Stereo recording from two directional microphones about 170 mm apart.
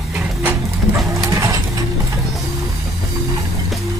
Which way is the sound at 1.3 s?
15° right (ahead or behind).